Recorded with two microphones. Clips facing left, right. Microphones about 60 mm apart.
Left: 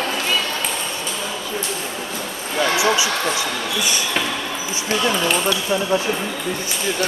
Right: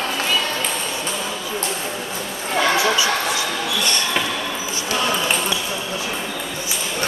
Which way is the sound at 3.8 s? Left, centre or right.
Centre.